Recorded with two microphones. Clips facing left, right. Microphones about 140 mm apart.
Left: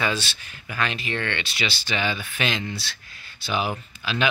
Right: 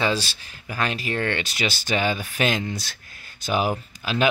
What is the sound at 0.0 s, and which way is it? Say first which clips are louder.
Speech: right 3 dB; 35° right (ahead or behind).